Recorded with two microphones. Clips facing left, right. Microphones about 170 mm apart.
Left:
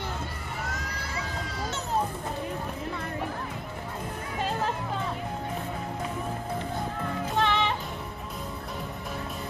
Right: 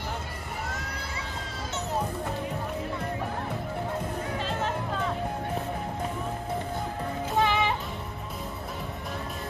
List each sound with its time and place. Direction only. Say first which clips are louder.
7.3 s music: right 1 dB; 5° right (ahead or behind)